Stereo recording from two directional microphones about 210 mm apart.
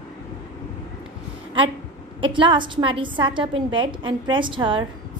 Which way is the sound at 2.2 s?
25° right (ahead or behind).